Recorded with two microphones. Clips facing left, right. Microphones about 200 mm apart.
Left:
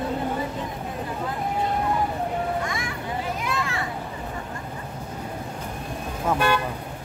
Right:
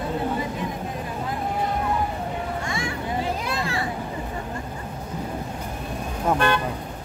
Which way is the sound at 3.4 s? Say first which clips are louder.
Right 1 dB; 35° right (ahead or behind).